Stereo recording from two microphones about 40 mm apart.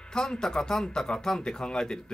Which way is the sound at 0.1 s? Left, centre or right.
Centre.